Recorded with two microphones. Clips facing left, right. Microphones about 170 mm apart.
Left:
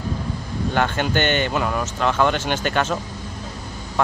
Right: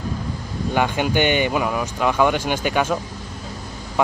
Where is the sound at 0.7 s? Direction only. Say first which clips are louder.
Right 2 dB; 10° right (ahead or behind).